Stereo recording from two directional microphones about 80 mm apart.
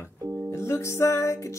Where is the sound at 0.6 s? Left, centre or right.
Left.